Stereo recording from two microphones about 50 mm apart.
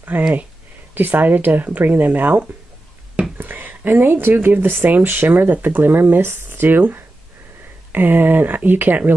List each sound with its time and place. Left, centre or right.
0.1 s speech: right